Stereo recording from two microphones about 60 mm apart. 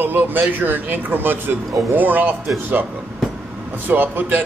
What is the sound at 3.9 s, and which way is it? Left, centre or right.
Speech, right.